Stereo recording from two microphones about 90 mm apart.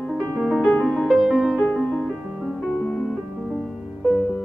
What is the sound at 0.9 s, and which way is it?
Music, centre (ahead or behind).